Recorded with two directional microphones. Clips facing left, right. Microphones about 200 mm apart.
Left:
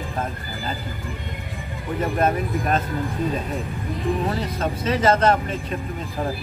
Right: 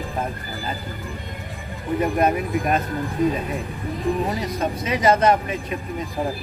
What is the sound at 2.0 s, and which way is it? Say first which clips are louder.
Speech: right 2 dB; 15° right (ahead or behind).